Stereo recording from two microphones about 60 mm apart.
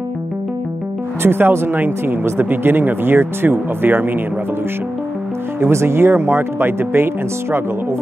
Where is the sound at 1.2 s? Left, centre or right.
Right.